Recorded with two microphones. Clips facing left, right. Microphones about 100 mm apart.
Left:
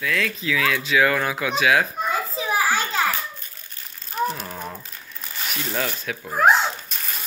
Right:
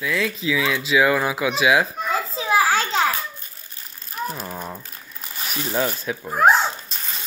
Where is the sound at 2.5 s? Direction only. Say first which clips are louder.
Right 4 dB; 90° right.